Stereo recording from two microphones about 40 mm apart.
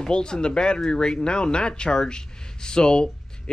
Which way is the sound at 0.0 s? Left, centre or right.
Left.